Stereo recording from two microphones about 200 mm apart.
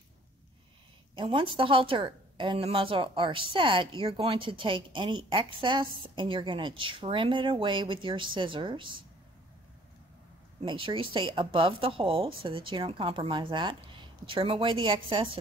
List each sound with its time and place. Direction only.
1.1 s speech: 25° right (ahead or behind)
10.6 s speech: 25° right (ahead or behind)